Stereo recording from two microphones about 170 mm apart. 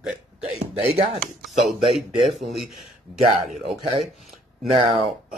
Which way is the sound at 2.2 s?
Centre (ahead or behind).